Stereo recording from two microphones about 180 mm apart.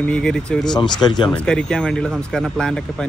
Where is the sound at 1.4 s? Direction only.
5° left (ahead or behind).